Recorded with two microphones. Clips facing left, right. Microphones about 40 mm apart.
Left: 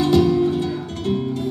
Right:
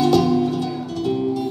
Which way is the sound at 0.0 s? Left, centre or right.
Left.